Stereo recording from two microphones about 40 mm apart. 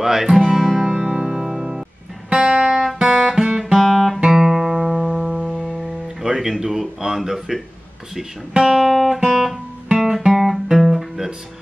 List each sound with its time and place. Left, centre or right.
0.0 s speech: centre
0.8 s music: centre
2.5 s guitar: right
2.8 s guitar: centre
3.7 s guitar: centre
4.3 s music: centre
6.2 s speech: centre
8.6 s speech: centre
8.9 s guitar: centre
10.4 s music: centre